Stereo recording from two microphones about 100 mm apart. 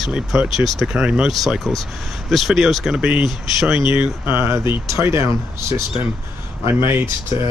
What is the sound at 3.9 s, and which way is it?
Speech, 25° right (ahead or behind).